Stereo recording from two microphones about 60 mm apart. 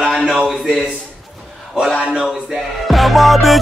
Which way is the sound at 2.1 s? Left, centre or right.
Centre.